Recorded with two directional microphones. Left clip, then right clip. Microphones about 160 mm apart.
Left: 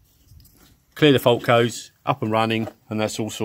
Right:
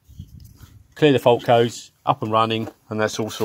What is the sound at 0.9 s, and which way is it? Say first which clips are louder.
Speech: right 1 dB; 15° left (ahead or behind).